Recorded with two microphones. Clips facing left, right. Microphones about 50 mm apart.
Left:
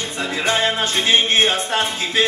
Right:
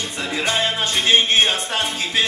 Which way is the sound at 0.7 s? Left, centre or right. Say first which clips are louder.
Even; centre.